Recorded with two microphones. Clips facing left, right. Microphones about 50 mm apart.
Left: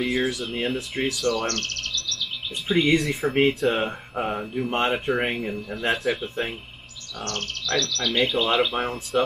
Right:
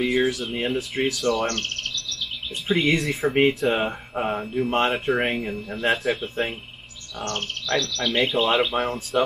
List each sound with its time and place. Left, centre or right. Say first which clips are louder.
0.0 s speech: right 3 dB; centre
1.0 s speech: right 1 dB; right
2.7 s speech: left 1 dB; centre
7.2 s speech: right 2 dB; right
8.7 s speech: right 1 dB; centre